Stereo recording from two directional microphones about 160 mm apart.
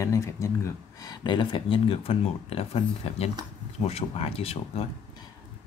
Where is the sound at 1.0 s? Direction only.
30° left (ahead or behind).